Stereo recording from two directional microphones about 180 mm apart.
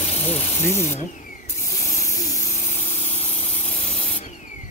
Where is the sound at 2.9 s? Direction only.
35° left (ahead or behind).